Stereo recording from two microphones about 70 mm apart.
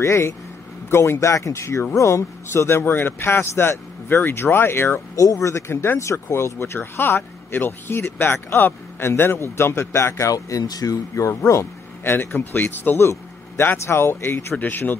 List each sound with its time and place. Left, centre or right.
0.0 s a man's voice: left
2.8 s speech: left
5.1 s a man's voice: left
12.0 s speech: left